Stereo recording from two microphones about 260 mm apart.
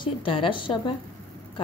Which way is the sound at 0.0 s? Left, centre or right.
Centre.